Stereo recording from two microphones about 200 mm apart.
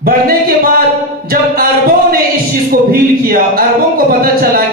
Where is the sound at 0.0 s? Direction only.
45° right (ahead or behind).